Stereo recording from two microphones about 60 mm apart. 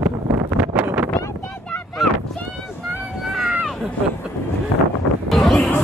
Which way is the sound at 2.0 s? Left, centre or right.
Centre.